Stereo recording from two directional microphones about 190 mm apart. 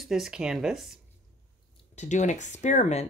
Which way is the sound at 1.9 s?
40° left (ahead or behind).